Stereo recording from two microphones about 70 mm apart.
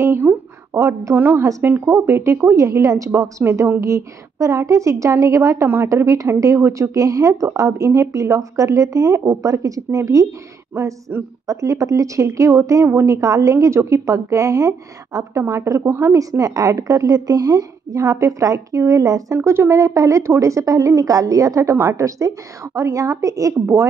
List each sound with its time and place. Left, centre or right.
0.0 s a sound: right
0.7 s speech: right
1.1 s a woman's voice: right
2.5 s speech: right
3.4 s speech: right
3.8 s speech: right
15.4 s a woman's voice: right
18.0 s speech: right
19.3 s speech: right